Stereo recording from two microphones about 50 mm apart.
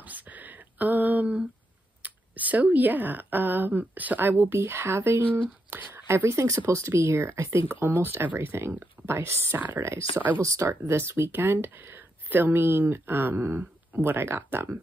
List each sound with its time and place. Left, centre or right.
0.0 s a sound: right
2.0 s speech: right
5.7 s speech: right
6.0 s speech: right
6.6 s speech: right
7.9 s speech: right
10.4 s speech: right